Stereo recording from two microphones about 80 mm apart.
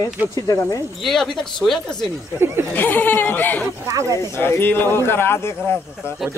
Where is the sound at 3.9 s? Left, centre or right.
Right.